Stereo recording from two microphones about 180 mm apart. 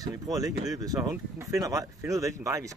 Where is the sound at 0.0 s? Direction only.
20° right (ahead or behind).